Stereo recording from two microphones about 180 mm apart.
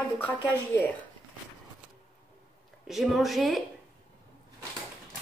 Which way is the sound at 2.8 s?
Centre (ahead or behind).